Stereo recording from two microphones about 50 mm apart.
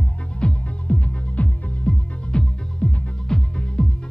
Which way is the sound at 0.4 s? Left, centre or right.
Left.